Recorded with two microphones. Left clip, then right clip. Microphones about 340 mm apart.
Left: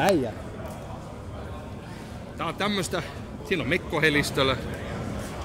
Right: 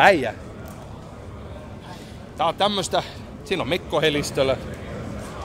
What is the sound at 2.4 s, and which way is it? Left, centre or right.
A man's voice, centre.